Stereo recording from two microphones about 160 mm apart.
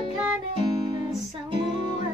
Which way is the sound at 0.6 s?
25° right (ahead or behind).